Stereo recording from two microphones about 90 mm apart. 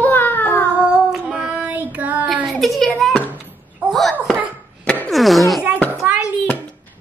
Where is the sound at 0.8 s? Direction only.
10° right (ahead or behind).